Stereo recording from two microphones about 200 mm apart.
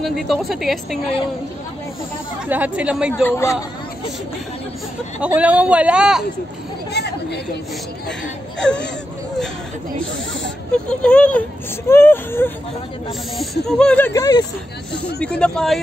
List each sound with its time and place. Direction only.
0.0 s a woman's voice: centre (ahead or behind)
2.4 s a woman's voice: 5° right (ahead or behind)
3.3 s speech: 15° left (ahead or behind)
5.2 s a man's voice: 5° right (ahead or behind)
6.9 s chatter: 55° left (ahead or behind)
8.5 s a woman's voice: 5° left (ahead or behind)
10.9 s a woman's voice: 5° left (ahead or behind)
15.0 s a woman's voice: 5° left (ahead or behind)